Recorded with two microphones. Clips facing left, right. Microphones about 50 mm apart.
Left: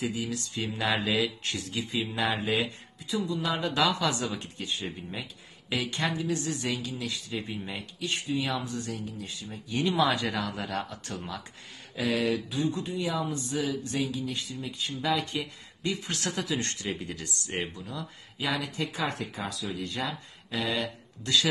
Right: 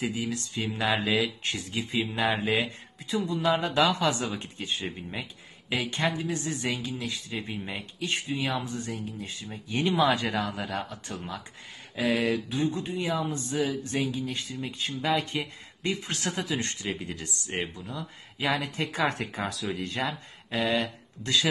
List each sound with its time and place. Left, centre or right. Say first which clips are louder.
0.0 s speech: right 1 dB; right
5.1 s speech: right 1 dB; centre
10.5 s a man's voice: even; centre
11.9 s speech: right 1 dB; right
16.6 s a man's voice: right 1 dB; centre
17.8 s speech: right 1 dB; right